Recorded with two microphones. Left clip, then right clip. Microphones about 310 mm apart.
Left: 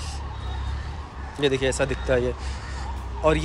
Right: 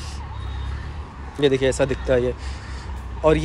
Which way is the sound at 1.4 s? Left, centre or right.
Centre.